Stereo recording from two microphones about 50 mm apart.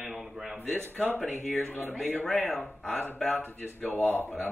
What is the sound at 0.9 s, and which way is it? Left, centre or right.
Speech, left.